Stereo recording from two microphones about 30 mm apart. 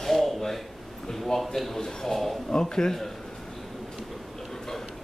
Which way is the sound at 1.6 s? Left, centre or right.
Centre.